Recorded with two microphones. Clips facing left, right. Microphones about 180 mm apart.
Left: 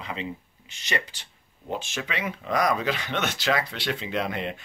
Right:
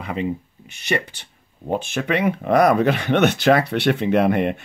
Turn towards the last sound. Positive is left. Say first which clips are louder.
# right 11 dB
turn(degrees=-60)  # may be behind; listen again after turning